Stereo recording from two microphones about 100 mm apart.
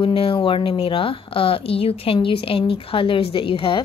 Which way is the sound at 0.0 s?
65° left (ahead or behind).